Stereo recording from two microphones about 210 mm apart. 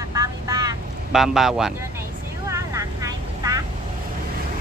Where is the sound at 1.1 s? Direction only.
Centre (ahead or behind).